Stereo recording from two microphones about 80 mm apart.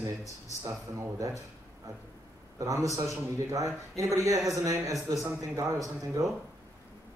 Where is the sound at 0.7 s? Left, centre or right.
Right.